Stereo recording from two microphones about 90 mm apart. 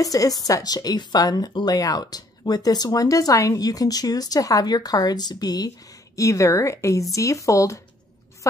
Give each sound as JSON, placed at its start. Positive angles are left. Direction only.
{"t": 0.0, "sound": "speech", "side_deg": 40}